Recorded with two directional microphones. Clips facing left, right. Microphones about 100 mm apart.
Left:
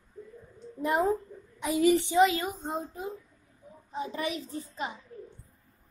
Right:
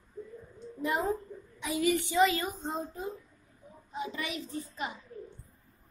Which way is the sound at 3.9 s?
35° left (ahead or behind).